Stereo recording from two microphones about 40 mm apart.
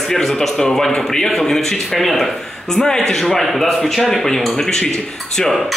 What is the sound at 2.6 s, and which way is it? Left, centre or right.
A man's voice, centre.